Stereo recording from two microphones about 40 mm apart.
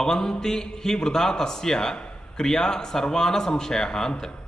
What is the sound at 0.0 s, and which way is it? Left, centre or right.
A man's voice, centre.